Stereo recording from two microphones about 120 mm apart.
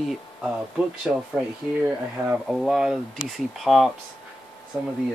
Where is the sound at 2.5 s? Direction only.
Centre (ahead or behind).